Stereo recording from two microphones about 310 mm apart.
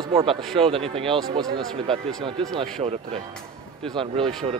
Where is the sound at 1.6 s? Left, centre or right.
Centre.